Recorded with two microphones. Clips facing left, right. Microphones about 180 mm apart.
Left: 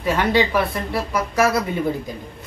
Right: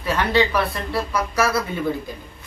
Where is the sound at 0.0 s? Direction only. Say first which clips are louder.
Left 1 dB; 15° left (ahead or behind).